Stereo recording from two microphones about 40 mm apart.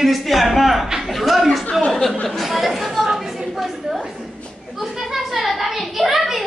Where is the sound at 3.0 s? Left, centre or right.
Centre.